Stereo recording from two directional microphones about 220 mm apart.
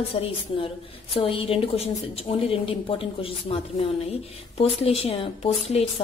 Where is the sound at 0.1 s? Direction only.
25° left (ahead or behind).